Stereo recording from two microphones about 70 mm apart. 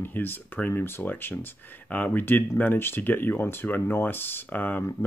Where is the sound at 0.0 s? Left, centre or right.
Left.